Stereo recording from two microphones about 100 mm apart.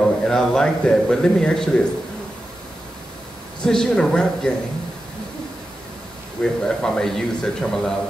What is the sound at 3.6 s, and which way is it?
Speech, 5° left (ahead or behind).